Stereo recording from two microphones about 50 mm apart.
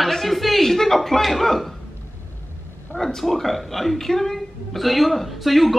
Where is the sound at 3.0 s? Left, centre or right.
Centre.